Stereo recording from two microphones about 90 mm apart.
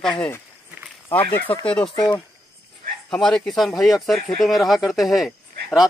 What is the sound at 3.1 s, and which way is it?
Speech, 5° left (ahead or behind).